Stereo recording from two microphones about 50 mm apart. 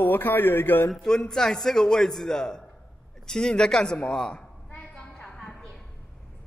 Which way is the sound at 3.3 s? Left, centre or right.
Centre.